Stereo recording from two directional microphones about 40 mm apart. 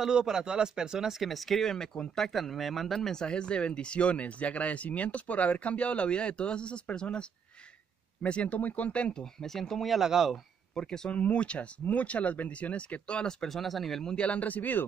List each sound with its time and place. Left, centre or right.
0.0 s speech: centre; by 9.1 s left
9.1 s speech: centre
9.8 s speech: centre
10.3 s speech: centre
11.1 s speech: left
13.5 s speech: centre
14.2 s speech: left